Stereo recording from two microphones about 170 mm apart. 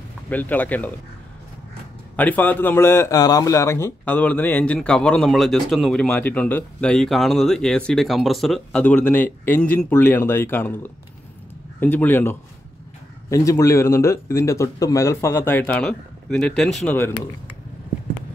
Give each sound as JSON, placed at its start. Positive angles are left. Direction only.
{"t": 0.3, "sound": "a man's voice", "side_deg": 10}
{"t": 2.1, "sound": "a man's voice", "side_deg": 10}